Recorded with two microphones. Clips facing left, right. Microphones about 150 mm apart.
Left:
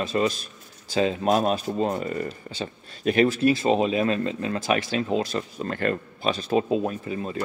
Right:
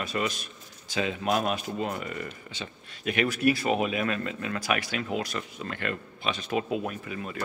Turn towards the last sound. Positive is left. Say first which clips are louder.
# left 6 dB
turn(degrees=30)  # may be behind; listen again after turning